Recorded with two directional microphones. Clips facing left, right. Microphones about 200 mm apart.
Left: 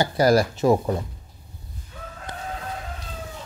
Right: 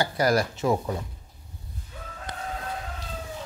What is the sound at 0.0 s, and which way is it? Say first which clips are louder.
Speech: left 5 dB; 30° left (ahead or behind).